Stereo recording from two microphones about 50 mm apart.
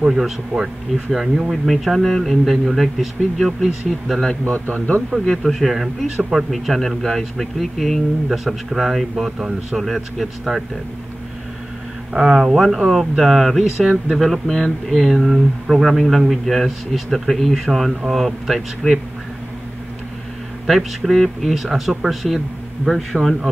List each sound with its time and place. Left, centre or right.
0.0 s speech: centre
0.5 s speech: left
1.1 s speech: centre
4.6 s speech: left
5.2 s speech: centre
12.1 s speech: centre
14.5 s speech: centre
15.1 s speech: centre
20.6 s speech: centre